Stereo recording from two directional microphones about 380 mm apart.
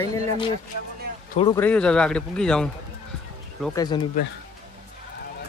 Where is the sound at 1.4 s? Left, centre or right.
Centre.